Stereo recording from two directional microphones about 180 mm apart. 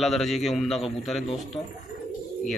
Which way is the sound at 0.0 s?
Centre (ahead or behind).